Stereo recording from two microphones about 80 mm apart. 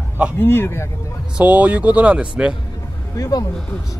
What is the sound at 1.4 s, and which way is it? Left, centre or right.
Speech, centre.